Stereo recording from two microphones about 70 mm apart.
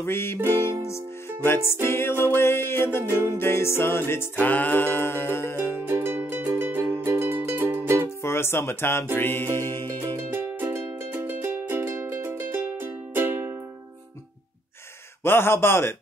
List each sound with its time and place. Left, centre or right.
0.0 s music: left
4.4 s music: left
5.9 s music: right
8.2 s speech: left
9.1 s music: left
10.3 s music: right
15.2 s music: left